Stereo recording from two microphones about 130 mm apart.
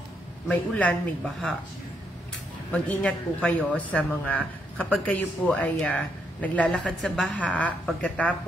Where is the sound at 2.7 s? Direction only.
10° left (ahead or behind).